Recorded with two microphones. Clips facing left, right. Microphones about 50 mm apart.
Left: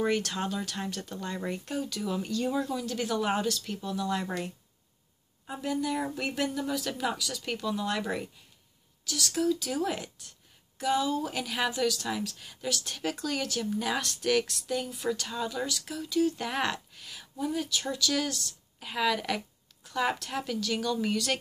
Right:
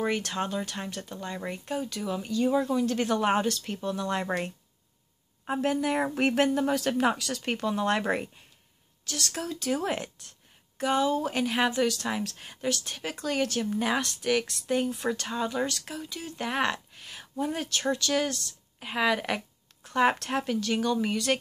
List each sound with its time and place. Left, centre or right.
0.4 s speech: right
2.8 s speech: right
5.4 s a woman's voice: right
6.5 s speech: right
7.2 s a woman's voice: right
7.4 s speech: right
14.4 s a woman's voice: right
17.5 s a woman's voice: right
17.8 s speech: right
19.8 s a sound: right
20.2 s speech: right